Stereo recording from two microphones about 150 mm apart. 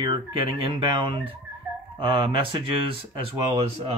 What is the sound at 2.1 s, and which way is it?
Speech, 35° right (ahead or behind).